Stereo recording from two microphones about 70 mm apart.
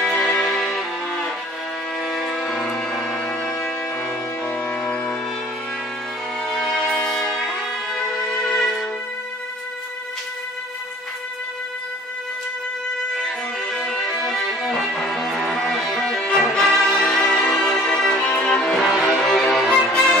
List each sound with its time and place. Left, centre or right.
0.0 s music: centre
6.4 s music: centre
13.1 s music: centre
17.4 s violin: centre